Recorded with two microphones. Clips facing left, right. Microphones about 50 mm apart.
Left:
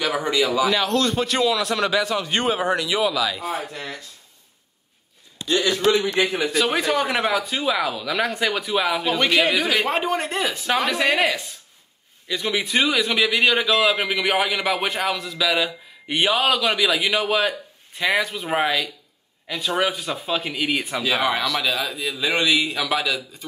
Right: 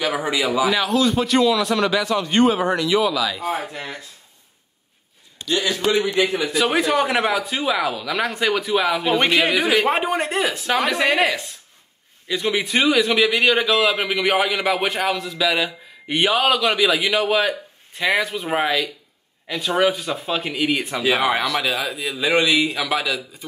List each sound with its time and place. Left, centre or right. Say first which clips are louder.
0.0 s a man's voice: even; centre
3.7 s a man's voice: right 1 dB; right
6.5 s a man's voice: right 2 dB; centre
9.0 s a man's voice: right 1 dB; right
11.1 s a man's voice: right 2 dB; right
12.3 s a man's voice: right 2 dB; centre
21.0 s a man's voice: right 3 dB; centre